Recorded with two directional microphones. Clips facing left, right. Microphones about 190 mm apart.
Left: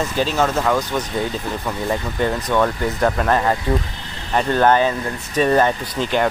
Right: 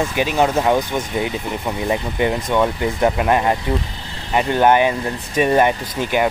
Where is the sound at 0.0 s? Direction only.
15° right (ahead or behind).